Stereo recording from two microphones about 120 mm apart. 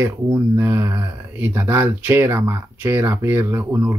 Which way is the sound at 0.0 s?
20° right (ahead or behind).